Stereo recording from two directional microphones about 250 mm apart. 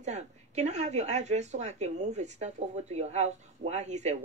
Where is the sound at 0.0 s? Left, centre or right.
Right.